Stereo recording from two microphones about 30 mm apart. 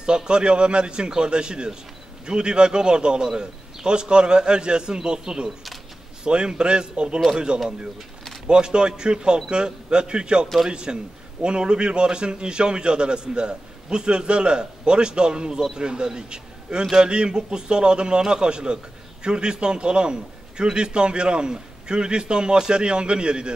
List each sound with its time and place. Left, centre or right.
0.0 s a man's voice: right